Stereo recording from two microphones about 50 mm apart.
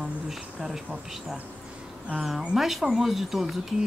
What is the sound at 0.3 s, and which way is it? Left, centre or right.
Speech, centre.